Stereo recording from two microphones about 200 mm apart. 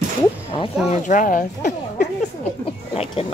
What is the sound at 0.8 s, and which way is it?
Speech, 35° left (ahead or behind).